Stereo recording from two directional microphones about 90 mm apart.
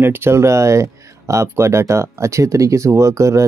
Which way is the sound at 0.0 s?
30° right (ahead or behind).